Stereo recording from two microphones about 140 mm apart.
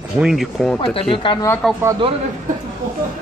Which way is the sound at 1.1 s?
35° left (ahead or behind).